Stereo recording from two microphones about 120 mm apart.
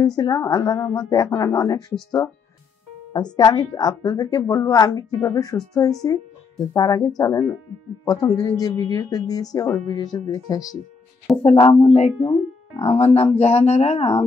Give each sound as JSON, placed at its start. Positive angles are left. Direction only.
{"t": 0.0, "sound": "a woman's voice", "side_deg": 30}
{"t": 3.1, "sound": "a woman's voice", "side_deg": 35}
{"t": 11.3, "sound": "speech", "side_deg": 0}
{"t": 11.6, "sound": "speech", "side_deg": 65}